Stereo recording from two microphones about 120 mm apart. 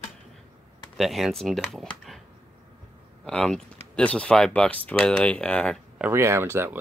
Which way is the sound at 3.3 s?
5° left (ahead or behind).